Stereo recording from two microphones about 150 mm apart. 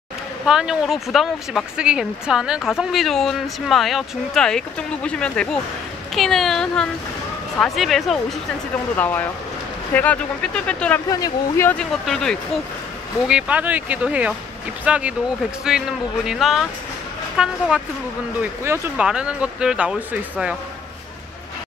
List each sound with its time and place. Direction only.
0.5 s speech: 5° right (ahead or behind)
8.9 s speech: 10° left (ahead or behind)
11.1 s speech: 25° left (ahead or behind)
12.1 s speech: 5° left (ahead or behind)
13.3 s speech: 10° right (ahead or behind)